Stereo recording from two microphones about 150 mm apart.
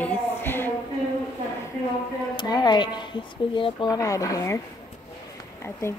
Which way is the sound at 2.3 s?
30° left (ahead or behind).